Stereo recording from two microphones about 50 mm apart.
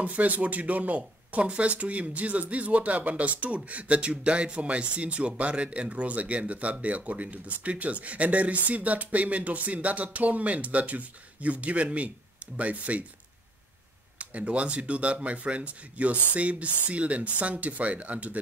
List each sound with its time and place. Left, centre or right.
0.0 s speech: right
14.1 s speech: right